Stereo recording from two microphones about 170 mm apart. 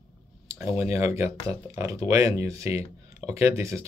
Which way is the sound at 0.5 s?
15° right (ahead or behind).